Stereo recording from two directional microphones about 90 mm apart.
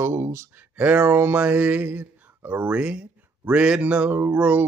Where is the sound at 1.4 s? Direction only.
15° right (ahead or behind).